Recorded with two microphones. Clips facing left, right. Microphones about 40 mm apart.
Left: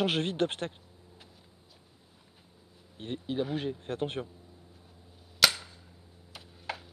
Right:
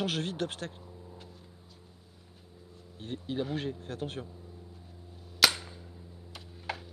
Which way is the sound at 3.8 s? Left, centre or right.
Left.